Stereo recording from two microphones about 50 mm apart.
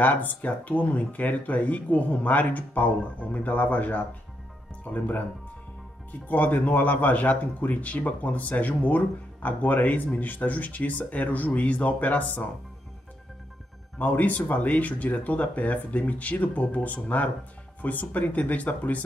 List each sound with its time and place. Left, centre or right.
0.0 s speech: left
6.2 s speech: left
13.9 s speech: left